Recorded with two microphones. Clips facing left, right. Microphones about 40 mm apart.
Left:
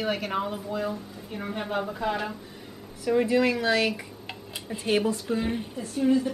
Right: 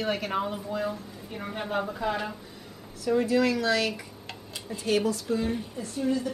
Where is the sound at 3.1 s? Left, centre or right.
Centre.